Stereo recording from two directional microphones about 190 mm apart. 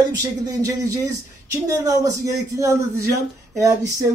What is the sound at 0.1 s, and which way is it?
Speech, 20° right (ahead or behind).